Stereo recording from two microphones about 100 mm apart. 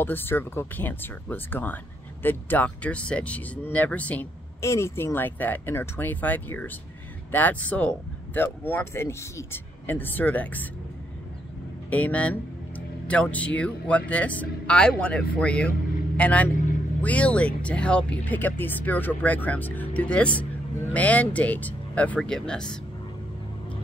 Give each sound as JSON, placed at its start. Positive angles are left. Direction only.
{"t": 0.0, "sound": "speech", "side_deg": 20}
{"t": 4.6, "sound": "speech", "side_deg": 30}
{"t": 11.9, "sound": "speech", "side_deg": 15}